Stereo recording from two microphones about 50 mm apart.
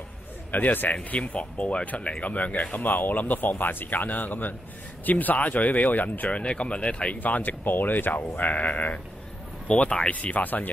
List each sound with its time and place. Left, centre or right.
0.5 s speech: left
7.2 s speech: left